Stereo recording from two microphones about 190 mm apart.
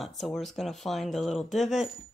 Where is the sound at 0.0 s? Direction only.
Centre (ahead or behind).